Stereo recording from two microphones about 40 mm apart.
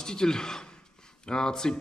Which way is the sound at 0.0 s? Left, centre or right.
Centre.